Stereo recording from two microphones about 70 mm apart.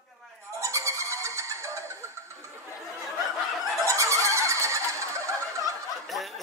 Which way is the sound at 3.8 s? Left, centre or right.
Right.